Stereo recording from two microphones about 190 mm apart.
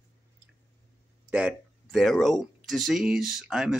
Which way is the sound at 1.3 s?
5° right (ahead or behind).